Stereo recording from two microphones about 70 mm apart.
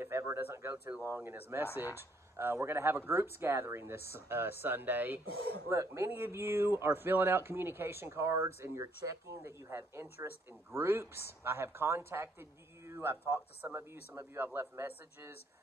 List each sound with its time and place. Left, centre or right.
0.0 s speech: right
5.7 s speech: right
8.8 s speech: right